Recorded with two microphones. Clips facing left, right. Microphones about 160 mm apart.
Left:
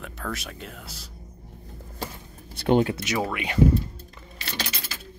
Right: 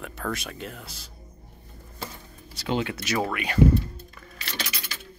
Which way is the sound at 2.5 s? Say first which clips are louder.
Left 7 dB; 55° left (ahead or behind).